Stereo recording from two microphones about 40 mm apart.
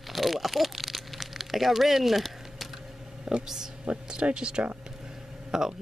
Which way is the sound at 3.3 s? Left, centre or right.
Centre.